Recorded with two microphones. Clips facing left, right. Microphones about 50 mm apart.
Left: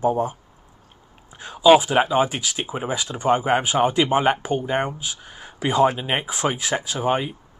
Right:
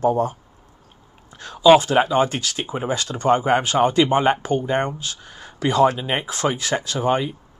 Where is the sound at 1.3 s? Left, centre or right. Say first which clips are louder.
Right 2 dB; centre.